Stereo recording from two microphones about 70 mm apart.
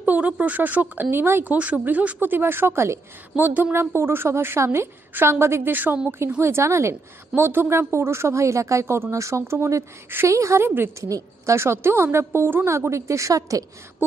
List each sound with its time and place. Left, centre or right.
0.0 s a woman's voice: right
1.5 s speech: right
3.3 s a woman's voice: right
6.4 s a woman's voice: right
11.5 s a woman's voice: right
12.6 s a woman's voice: right